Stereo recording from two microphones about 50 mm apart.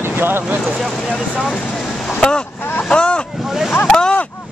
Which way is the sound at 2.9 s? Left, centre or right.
Left.